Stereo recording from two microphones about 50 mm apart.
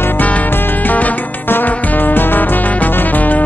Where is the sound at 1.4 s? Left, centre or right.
Left.